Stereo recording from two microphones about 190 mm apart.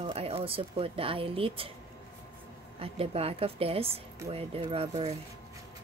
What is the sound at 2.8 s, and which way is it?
A woman's voice, 30° right (ahead or behind).